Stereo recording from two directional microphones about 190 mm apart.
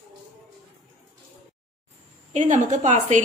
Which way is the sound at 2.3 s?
40° right (ahead or behind).